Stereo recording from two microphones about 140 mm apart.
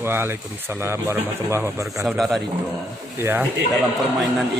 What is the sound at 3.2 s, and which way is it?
Speech, 15° right (ahead or behind).